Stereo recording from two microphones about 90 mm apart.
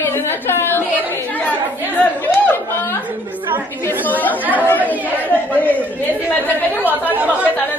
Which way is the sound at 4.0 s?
20° left (ahead or behind).